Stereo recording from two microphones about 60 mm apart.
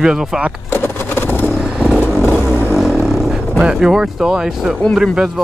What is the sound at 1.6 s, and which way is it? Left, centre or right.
Vehicle, centre.